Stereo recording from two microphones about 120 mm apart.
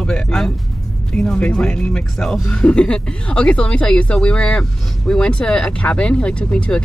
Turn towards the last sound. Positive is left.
turn(degrees=10)  # may be behind; listen again after turning